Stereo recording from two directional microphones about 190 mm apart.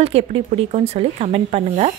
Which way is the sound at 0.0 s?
30° right (ahead or behind).